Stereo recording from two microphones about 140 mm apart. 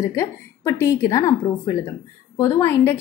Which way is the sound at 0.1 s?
20° left (ahead or behind).